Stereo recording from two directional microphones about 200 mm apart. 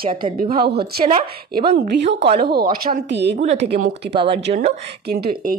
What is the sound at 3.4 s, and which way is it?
Speech, 35° right (ahead or behind).